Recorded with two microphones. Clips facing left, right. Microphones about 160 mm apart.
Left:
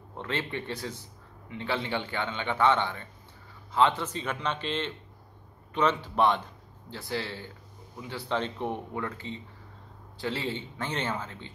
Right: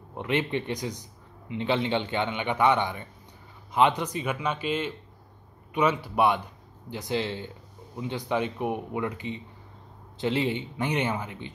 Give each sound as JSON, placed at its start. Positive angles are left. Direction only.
{"t": 0.1, "sound": "speech", "side_deg": -15}